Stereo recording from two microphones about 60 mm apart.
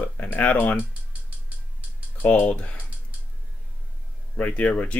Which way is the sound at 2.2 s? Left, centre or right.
Left.